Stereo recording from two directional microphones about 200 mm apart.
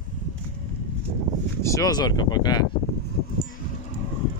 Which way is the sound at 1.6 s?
15° left (ahead or behind).